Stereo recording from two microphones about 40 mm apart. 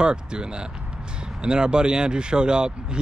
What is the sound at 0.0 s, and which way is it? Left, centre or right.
Speech, right.